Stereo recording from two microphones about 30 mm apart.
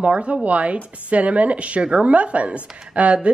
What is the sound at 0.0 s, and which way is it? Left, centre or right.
Speech, right.